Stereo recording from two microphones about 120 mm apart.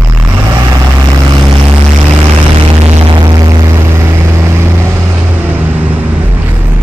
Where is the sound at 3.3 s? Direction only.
35° right (ahead or behind).